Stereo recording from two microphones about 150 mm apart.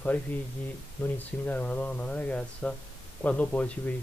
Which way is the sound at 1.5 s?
10° left (ahead or behind).